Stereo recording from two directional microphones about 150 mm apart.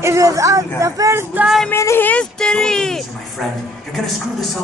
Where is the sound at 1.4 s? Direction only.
Centre (ahead or behind).